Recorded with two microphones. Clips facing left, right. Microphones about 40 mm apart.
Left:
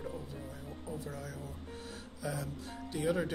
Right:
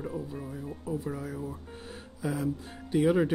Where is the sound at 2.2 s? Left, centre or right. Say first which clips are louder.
Right 7 dB; right.